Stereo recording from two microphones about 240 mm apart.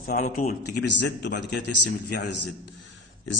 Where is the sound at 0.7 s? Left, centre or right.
Left.